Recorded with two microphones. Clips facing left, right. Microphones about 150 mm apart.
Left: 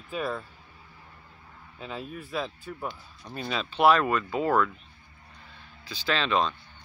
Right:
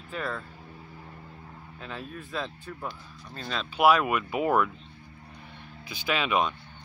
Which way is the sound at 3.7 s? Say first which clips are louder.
Even; 10° right (ahead or behind).